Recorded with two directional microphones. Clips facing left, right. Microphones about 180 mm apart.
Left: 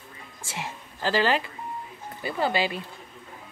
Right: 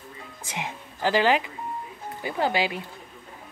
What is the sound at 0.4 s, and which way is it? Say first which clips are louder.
Speech: right 2 dB; 15° right (ahead or behind).